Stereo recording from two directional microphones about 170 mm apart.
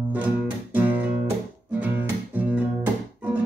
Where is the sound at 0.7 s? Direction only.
10° right (ahead or behind).